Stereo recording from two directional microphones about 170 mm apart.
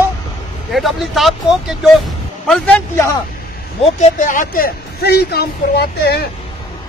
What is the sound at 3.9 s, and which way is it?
A woman's voice, 50° left (ahead or behind).